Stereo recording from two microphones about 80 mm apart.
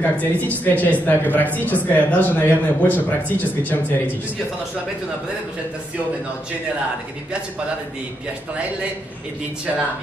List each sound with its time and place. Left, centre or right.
0.0 s speech: left